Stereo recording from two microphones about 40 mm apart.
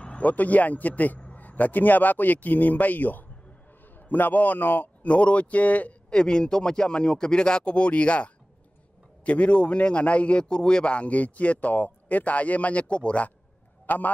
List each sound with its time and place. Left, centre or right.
0.2 s a man's voice: left
5.0 s a man's voice: left
6.0 s a man's voice: left
13.8 s a man's voice: left